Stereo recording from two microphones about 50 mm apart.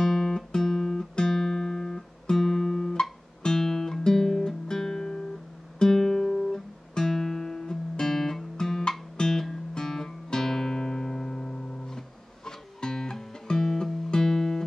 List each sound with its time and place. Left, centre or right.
0.0 s guitar: centre
9.1 s music: centre